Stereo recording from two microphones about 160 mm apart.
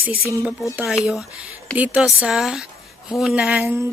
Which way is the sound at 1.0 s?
5° right (ahead or behind).